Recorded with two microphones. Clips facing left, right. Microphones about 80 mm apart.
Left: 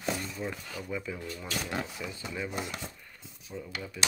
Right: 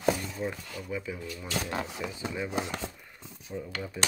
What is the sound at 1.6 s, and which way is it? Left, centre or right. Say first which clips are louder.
Speech: right 2 dB; right.